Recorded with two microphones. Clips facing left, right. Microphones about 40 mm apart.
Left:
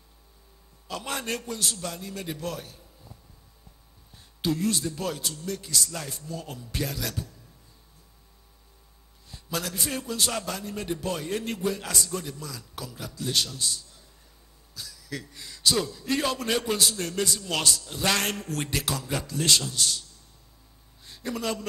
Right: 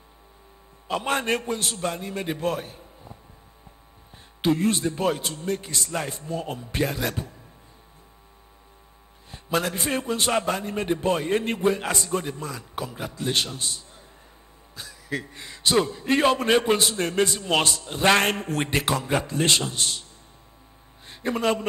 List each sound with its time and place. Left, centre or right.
0.8 s a man's voice: right
4.4 s a man's voice: right
9.3 s a man's voice: right
21.0 s a sound: right